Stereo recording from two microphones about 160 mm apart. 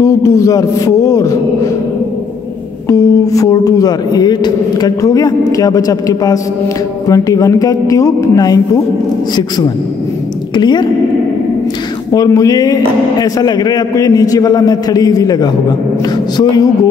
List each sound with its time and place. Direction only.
0.0 s a man's voice: 20° left (ahead or behind)
2.9 s a man's voice: 20° left (ahead or behind)
10.5 s a woman's voice: 30° left (ahead or behind)
12.1 s a man's voice: 20° left (ahead or behind)